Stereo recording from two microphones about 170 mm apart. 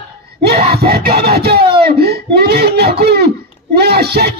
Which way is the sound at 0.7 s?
65° right (ahead or behind).